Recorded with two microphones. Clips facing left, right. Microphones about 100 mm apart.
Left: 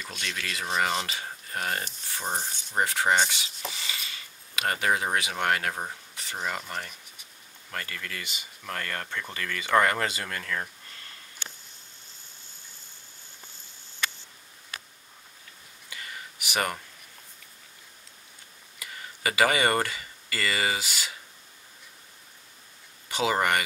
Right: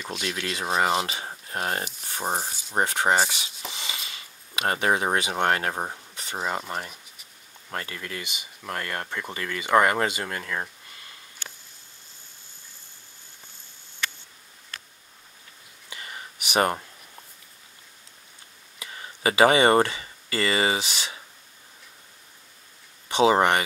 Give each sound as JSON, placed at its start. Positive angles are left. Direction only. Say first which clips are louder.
{"t": 0.1, "sound": "speech", "louder": "right 7 dB", "side_deg": -10}
{"t": 0.4, "sound": "speech", "louder": "right 3 dB", "side_deg": -25}
{"t": 3.7, "sound": "a sound", "louder": "right 2 dB", "side_deg": -20}
{"t": 6.3, "sound": "speech", "louder": "right 4 dB", "side_deg": -35}
{"t": 7.7, "sound": "speech", "louder": "right 3 dB", "side_deg": -20}
{"t": 15.9, "sound": "a sound", "louder": "right 2 dB", "side_deg": -25}
{"t": 18.8, "sound": "speech", "louder": "right 4 dB", "side_deg": -25}
{"t": 23.0, "sound": "speech", "louder": "right 6 dB", "side_deg": -25}